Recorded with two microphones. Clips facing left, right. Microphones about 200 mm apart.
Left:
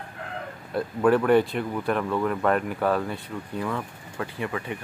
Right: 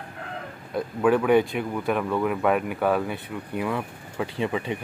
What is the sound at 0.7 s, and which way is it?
Speech, centre (ahead or behind).